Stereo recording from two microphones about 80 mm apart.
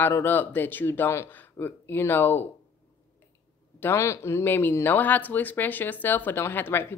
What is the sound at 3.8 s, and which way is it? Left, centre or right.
Speech, left.